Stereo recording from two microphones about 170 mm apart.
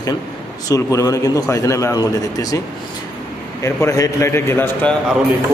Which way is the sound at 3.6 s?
20° left (ahead or behind).